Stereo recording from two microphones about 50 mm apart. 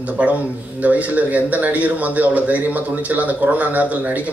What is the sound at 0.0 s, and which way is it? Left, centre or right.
A man's voice, right.